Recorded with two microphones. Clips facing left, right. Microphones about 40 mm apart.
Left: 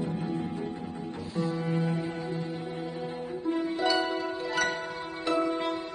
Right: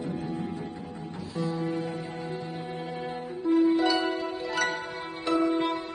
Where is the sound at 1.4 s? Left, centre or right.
Left.